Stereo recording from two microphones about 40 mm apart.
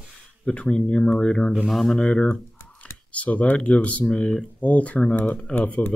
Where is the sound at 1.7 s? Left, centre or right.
Centre.